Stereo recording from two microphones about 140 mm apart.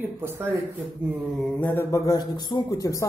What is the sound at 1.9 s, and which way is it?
A man's voice, 25° left (ahead or behind).